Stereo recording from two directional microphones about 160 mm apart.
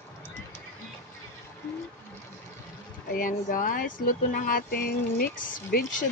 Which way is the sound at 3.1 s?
60° left (ahead or behind).